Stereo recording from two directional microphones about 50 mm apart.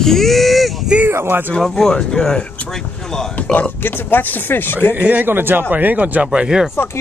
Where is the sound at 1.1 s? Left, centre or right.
Right.